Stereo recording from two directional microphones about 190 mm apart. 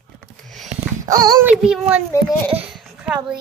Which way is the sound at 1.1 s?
20° right (ahead or behind).